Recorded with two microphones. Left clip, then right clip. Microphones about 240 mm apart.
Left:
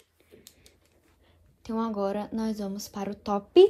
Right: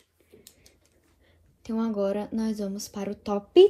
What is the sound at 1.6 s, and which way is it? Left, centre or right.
Speech, left.